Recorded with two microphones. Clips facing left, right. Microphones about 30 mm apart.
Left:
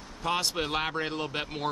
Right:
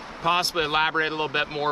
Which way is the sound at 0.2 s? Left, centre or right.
Right.